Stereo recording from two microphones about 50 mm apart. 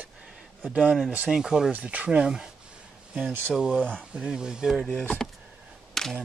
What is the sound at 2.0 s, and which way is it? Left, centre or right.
Speech, centre.